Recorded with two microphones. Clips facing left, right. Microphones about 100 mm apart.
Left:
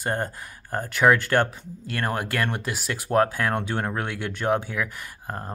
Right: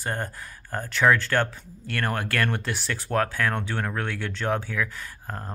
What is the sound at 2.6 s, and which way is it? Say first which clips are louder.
Speech: left 1 dB; 10° left (ahead or behind).